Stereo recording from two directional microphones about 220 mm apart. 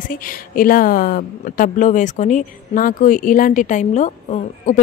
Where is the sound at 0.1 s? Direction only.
40° left (ahead or behind).